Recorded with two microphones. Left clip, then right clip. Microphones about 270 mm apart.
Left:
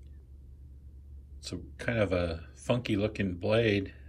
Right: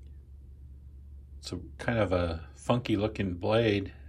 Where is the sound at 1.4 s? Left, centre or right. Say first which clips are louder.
Right 1 dB; centre.